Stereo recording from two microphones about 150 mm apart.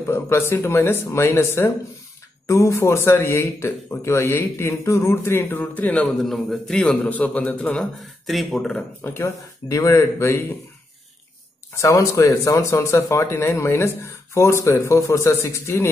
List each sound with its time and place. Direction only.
0.0 s a man's voice: 15° left (ahead or behind)
9.0 s speech: 15° left (ahead or behind)
11.8 s speech: 20° left (ahead or behind)